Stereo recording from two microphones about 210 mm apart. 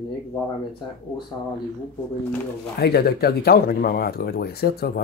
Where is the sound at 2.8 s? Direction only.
50° left (ahead or behind).